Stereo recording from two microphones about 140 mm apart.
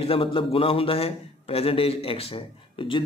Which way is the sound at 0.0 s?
40° left (ahead or behind).